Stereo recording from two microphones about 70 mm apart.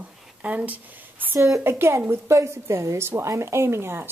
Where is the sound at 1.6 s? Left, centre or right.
Right.